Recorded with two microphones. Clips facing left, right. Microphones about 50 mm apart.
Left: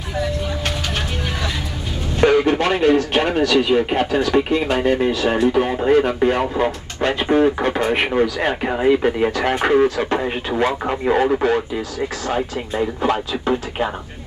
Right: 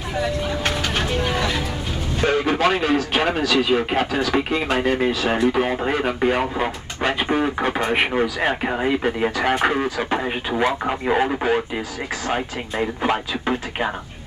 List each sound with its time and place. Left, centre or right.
0.7 s vehicle: centre
2.4 s speech: centre
9.8 s speech: centre
10.1 s speech: centre
12.7 s speech: right